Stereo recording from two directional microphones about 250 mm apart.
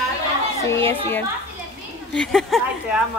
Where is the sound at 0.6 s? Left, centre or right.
Centre.